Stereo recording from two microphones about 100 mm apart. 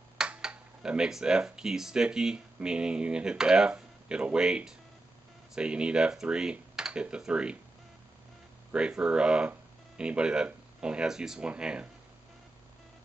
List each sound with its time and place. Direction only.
0.2 s speech: 10° right (ahead or behind)
8.7 s speech: 10° right (ahead or behind)